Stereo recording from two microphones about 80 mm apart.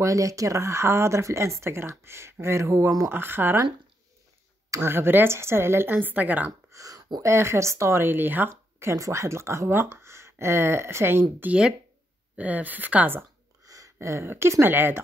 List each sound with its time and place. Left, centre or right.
0.0 s speech: right
4.8 s speech: right
6.7 s a sound: right
7.2 s speech: right
13.7 s speech: right